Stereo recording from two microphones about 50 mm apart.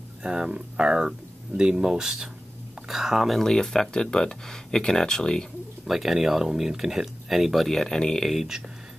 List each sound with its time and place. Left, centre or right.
0.2 s speech: centre
3.3 s speech: centre
5.9 s speech: centre
7.8 s speech: centre
8.3 s speech: centre